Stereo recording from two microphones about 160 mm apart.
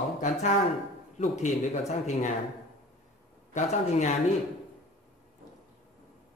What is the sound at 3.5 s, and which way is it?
Speech, 45° left (ahead or behind).